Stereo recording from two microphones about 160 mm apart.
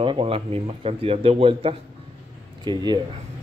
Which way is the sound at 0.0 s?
35° right (ahead or behind).